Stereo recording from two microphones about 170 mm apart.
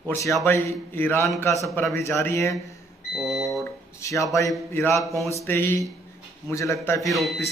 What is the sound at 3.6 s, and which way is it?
A man's voice, 15° left (ahead or behind).